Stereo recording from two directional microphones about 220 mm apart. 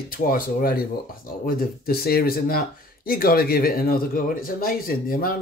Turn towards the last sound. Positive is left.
turn(degrees=40)  # may be behind; listen again after turning